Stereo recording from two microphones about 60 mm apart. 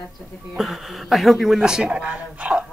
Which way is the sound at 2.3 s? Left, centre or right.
Centre.